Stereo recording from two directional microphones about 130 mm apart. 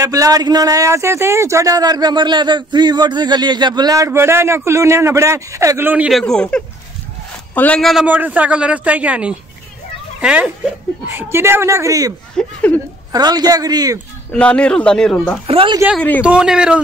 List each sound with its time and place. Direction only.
0.0 s speech: 25° right (ahead or behind)
6.0 s speech: centre (ahead or behind)
8.1 s a man's voice: 10° right (ahead or behind)
12.4 s speech: 10° left (ahead or behind)
13.1 s a man's voice: 30° right (ahead or behind)
14.3 s speech: 10° left (ahead or behind)
15.4 s speech: 45° right (ahead or behind)
16.2 s a man's voice: 5° right (ahead or behind)